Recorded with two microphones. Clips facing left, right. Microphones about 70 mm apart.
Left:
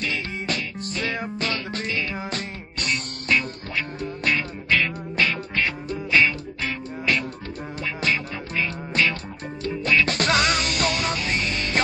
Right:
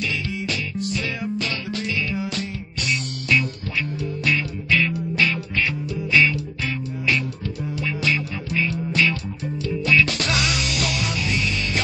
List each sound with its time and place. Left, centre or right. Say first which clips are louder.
0.0 s music: right 1 dB; left